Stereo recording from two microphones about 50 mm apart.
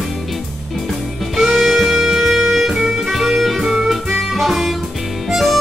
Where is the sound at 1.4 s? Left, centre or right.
Centre.